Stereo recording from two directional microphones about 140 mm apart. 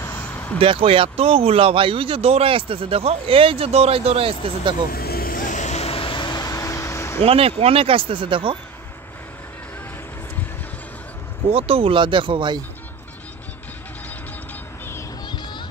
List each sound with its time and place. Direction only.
0.0 s vehicle: 15° left (ahead or behind)
0.6 s speech: 40° right (ahead or behind)
4.8 s vehicle: 90° left; by 7.2 s 20° left (ahead or behind)
7.2 s speech: 45° right (ahead or behind)
11.5 s speech: 45° right (ahead or behind)
15.2 s music: 30° left (ahead or behind)